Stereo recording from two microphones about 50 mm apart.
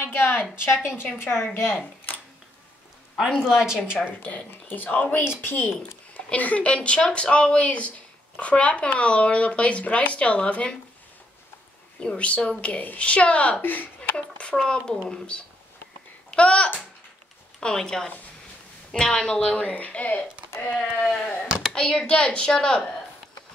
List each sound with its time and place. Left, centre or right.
0.0 s a woman's voice: left
3.2 s speech: centre
4.2 s speech: left
5.2 s a woman's voice: left
6.1 s speech: left
12.0 s speech: left
13.6 s speech: left
14.1 s a child's voice: centre
19.4 s speech: left